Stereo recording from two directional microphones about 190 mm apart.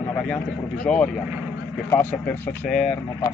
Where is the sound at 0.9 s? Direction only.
5° left (ahead or behind).